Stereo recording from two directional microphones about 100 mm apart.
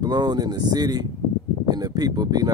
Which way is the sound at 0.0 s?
45° right (ahead or behind).